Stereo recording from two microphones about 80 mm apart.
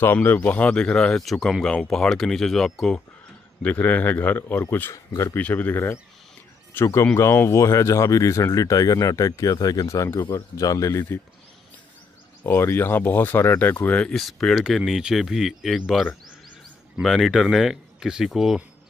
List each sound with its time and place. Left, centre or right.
0.0 s speech: left; by 3.0 s centre
3.6 s speech: left
4.9 s speech: left
5.3 s speech: left
12.4 s speech: left
14.1 s speech: centre
17.0 s speech: centre